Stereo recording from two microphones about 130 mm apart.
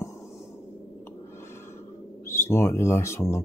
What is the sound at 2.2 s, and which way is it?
Speech, 20° left (ahead or behind).